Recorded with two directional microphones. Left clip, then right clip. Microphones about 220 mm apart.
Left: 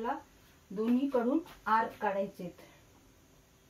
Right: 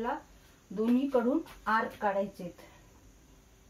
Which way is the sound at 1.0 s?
Centre (ahead or behind).